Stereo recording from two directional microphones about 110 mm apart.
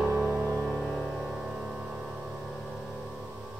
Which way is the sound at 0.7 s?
Centre (ahead or behind).